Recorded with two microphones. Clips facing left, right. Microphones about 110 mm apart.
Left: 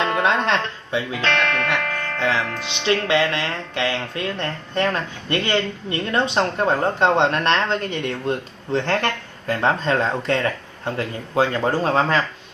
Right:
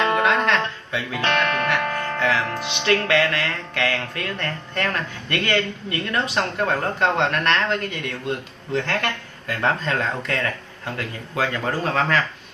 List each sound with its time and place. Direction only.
0.2 s music: 30° left (ahead or behind)
1.2 s music: 15° right (ahead or behind)
2.1 s music: 25° left (ahead or behind)
2.8 s speech: 20° left (ahead or behind)